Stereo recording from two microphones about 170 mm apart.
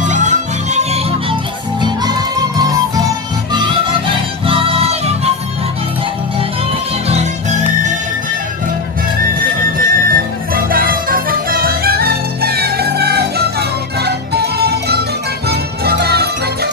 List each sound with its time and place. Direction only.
0.0 s music: 45° right (ahead or behind)
1.8 s music: 25° right (ahead or behind)
4.5 s music: 30° right (ahead or behind)
7.1 s music: 40° right (ahead or behind)
9.8 s music: 60° right (ahead or behind)